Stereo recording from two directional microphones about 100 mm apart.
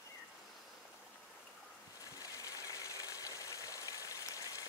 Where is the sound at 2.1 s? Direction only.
35° left (ahead or behind).